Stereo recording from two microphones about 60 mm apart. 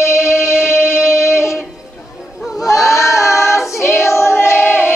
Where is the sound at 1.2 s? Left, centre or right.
Left.